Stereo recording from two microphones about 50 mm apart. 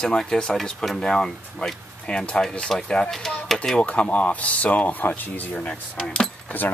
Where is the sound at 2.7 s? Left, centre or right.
Centre.